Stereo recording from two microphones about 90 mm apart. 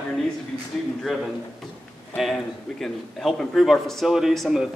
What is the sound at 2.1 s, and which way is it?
A man's voice, centre (ahead or behind).